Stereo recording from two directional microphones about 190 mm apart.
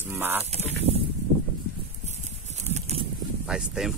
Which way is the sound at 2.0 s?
35° right (ahead or behind).